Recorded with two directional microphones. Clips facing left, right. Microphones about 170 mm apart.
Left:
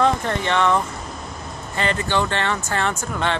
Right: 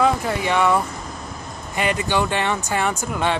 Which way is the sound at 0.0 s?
5° right (ahead or behind).